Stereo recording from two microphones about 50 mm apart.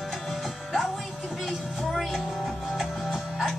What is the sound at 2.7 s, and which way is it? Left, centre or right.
Music, centre.